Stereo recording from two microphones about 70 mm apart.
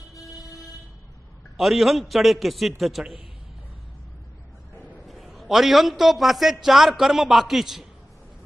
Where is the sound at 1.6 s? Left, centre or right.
Centre.